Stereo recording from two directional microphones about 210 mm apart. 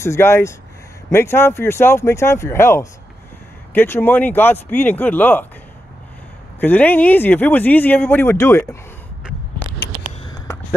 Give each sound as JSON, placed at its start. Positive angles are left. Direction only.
{"t": 0.0, "sound": "speech", "side_deg": 10}
{"t": 6.6, "sound": "speech", "side_deg": 10}
{"t": 9.8, "sound": "a sound", "side_deg": 50}